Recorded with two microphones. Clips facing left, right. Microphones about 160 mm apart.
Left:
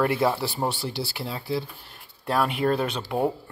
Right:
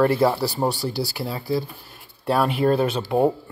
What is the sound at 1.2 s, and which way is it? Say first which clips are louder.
Speech: right 3 dB; centre (ahead or behind).